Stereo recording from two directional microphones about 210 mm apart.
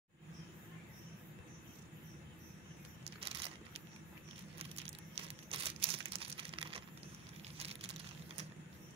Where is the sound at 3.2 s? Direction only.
25° right (ahead or behind).